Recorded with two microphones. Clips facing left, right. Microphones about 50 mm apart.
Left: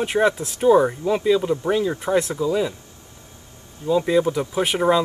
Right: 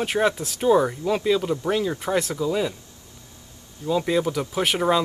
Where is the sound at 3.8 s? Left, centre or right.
Left.